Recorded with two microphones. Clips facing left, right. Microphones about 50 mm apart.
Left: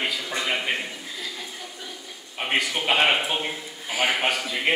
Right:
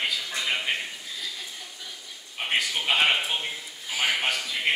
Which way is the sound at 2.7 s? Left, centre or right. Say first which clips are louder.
Left 2 dB; centre.